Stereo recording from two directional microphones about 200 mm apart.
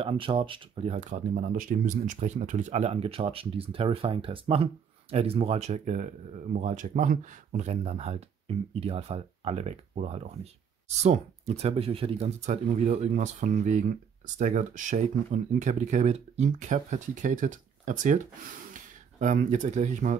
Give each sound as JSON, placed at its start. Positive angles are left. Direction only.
{"t": 0.0, "sound": "speech", "side_deg": -25}